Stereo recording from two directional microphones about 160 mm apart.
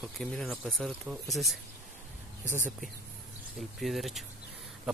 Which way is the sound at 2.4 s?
50° right (ahead or behind).